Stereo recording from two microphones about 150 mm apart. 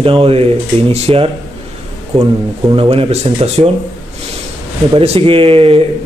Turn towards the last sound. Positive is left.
turn(degrees=-40)  # may be behind; listen again after turning